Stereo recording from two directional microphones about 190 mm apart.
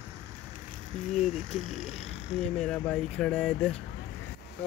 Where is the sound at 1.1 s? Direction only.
35° left (ahead or behind).